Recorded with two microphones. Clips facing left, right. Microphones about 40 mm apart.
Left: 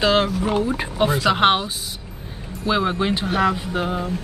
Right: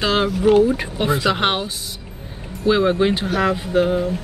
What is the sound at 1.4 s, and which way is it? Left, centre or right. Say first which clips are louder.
Speech: left 3 dB; centre.